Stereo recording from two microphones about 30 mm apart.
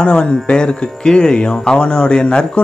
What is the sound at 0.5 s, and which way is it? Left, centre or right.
Speech, left.